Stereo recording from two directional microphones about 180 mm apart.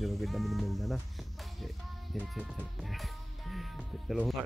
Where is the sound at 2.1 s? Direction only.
5° right (ahead or behind).